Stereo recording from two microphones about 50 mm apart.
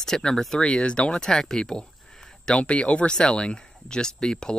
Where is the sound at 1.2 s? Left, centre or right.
Centre.